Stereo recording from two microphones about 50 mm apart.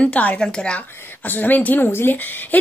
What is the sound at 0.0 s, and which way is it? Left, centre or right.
Speech, left.